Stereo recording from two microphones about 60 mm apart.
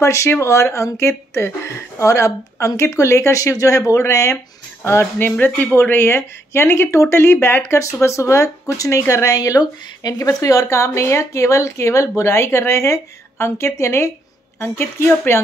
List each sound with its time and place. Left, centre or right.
0.0 s a woman's voice: left
3.5 s speech: left
5.2 s a woman's voice: left
14.6 s speech: left